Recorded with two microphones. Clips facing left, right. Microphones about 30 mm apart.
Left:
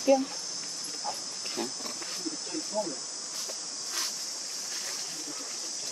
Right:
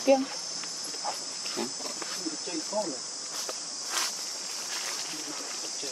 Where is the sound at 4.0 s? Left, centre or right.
Right.